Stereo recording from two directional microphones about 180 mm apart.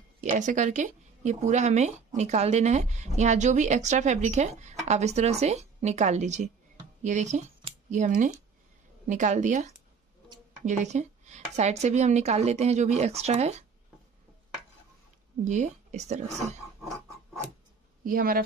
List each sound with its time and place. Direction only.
0.2 s a woman's voice: 45° right (ahead or behind)
15.4 s a woman's voice: 40° right (ahead or behind)
18.0 s a woman's voice: 50° right (ahead or behind)